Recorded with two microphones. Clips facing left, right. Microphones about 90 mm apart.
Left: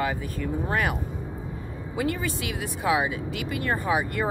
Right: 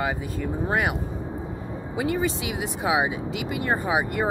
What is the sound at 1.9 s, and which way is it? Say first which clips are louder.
Speech: right 3 dB; 25° right (ahead or behind).